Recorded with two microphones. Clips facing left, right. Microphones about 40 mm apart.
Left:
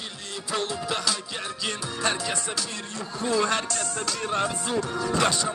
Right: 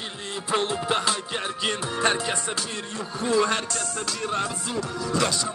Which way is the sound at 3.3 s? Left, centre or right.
Centre.